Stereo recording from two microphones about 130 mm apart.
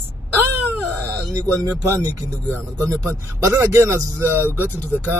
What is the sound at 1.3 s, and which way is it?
Speech, 20° right (ahead or behind).